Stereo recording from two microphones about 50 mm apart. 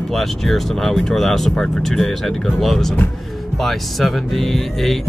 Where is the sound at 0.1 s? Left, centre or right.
Centre.